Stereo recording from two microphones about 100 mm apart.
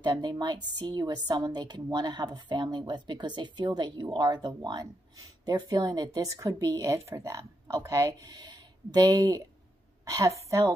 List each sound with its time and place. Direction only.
0.0 s a woman's voice: 45° right (ahead or behind)